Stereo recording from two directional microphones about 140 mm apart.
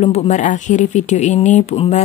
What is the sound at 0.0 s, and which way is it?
Speech, 50° left (ahead or behind).